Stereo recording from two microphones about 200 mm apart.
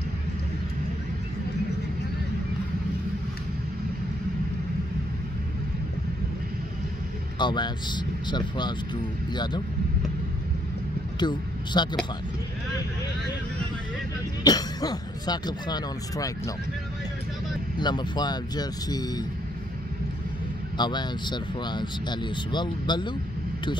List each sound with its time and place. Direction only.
7.3 s speech: 20° left (ahead or behind)
11.1 s speech: 20° left (ahead or behind)
14.4 s speech: 20° left (ahead or behind)
17.7 s speech: 20° left (ahead or behind)
20.7 s speech: 20° left (ahead or behind)